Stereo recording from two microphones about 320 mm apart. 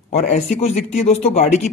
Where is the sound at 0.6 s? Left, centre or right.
Left.